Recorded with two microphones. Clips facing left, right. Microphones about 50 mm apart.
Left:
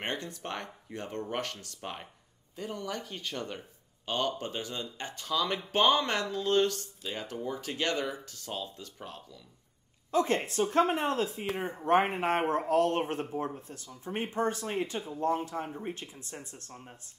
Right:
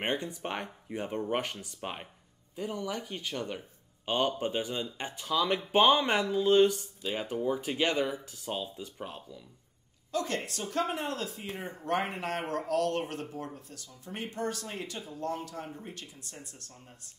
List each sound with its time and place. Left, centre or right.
0.0 s speech: centre
2.5 s speech: centre
4.0 s speech: centre
10.1 s speech: left